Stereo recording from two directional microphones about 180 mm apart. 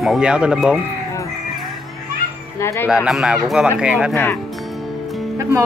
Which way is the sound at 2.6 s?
15° left (ahead or behind).